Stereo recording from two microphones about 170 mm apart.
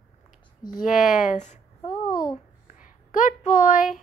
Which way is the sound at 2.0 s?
55° left (ahead or behind).